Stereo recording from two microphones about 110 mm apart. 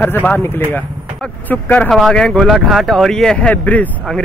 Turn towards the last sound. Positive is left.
turn(degrees=15)  # may be behind; listen again after turning